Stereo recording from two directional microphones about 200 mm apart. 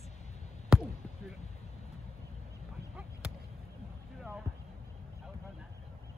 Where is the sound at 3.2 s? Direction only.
5° right (ahead or behind).